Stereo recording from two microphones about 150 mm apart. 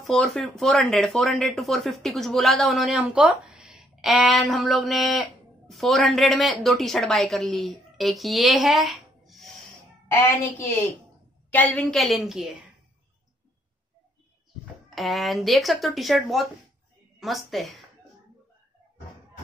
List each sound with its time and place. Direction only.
0.0 s speech: centre (ahead or behind)
10.1 s a woman's voice: 15° left (ahead or behind); by 12.6 s 5° right (ahead or behind)
15.0 s speech: centre (ahead or behind)